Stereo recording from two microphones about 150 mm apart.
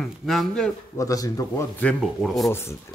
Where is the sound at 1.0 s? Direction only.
25° left (ahead or behind).